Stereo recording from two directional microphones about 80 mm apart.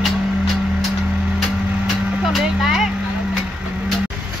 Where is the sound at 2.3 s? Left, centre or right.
Centre.